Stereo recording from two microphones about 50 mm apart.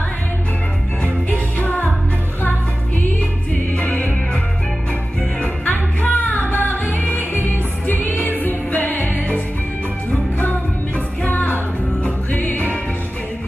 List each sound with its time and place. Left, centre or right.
1.0 s music: left
3.0 s music: left
5.4 s music: left
11.2 s music: left